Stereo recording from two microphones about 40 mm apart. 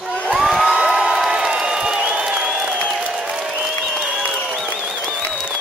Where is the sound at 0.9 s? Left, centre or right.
Right.